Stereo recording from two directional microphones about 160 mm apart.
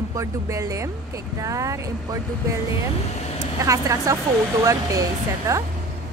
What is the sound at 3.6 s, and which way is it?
Speech, 20° right (ahead or behind).